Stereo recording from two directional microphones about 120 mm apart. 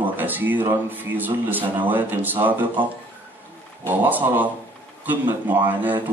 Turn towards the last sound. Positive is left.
turn(degrees=-15)  # may be behind; listen again after turning